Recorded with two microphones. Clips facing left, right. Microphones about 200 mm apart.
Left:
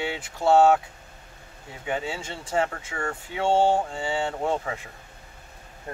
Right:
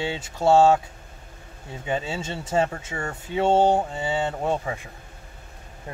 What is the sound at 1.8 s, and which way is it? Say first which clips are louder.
Speech: right 2 dB; 25° right (ahead or behind).